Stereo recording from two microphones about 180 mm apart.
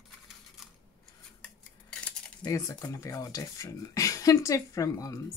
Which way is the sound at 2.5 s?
20° left (ahead or behind).